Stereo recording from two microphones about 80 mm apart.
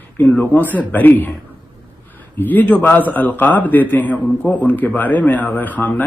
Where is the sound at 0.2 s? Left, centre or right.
Centre.